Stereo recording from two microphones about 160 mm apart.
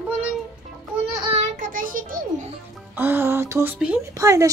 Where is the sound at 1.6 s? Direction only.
60° right (ahead or behind).